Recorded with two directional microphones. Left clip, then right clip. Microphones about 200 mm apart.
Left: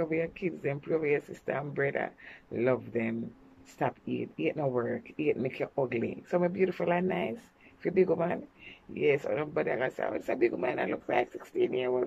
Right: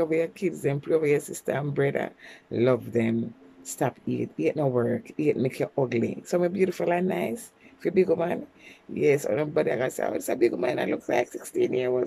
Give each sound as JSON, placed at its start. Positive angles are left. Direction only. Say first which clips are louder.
{"t": 0.0, "sound": "speech", "louder": "right 6 dB", "side_deg": -20}